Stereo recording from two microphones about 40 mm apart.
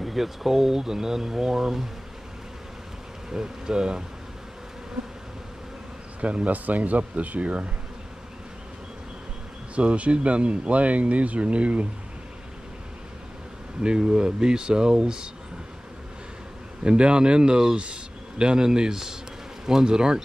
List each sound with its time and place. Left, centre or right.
0.0 s speech: centre
3.3 s speech: centre
6.2 s speech: right
9.8 s speech: right
13.8 s speech: right
16.8 s speech: right